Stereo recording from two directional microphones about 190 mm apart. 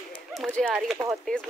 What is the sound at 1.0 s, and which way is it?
Speech, 15° right (ahead or behind).